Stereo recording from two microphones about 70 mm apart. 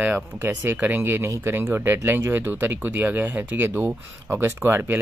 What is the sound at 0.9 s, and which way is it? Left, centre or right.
Speech, right.